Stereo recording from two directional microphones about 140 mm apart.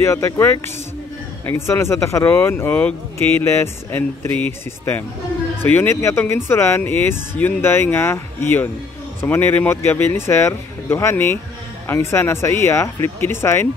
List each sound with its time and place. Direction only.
0.0 s speech: 20° left (ahead or behind)